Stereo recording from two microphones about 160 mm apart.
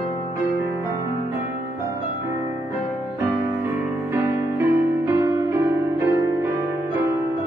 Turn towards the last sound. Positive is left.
turn(degrees=-20)  # may be behind; listen again after turning